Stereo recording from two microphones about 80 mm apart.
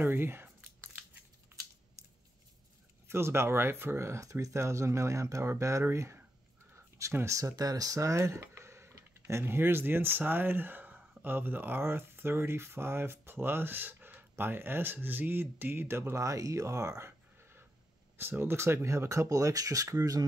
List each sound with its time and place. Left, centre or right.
0.0 s speech: right
3.1 s speech: right
6.7 s a sound: right
9.4 s speech: right